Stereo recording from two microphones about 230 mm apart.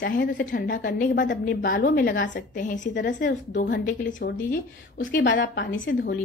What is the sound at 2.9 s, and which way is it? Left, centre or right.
Speech, left.